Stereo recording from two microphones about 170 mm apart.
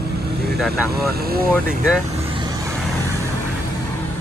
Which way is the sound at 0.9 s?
65° right (ahead or behind).